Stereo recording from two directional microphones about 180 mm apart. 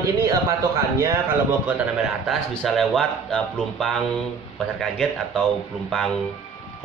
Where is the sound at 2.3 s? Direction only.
Centre (ahead or behind).